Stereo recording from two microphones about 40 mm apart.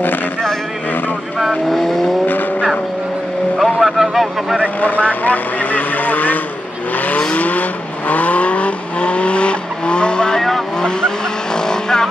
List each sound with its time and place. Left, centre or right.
1.7 s vehicle: centre
3.5 s vehicle: centre
4.7 s speech: left
7.0 s vehicle: left; by 12.1 s centre